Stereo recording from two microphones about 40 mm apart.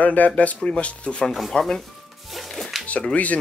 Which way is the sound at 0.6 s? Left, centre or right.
Left.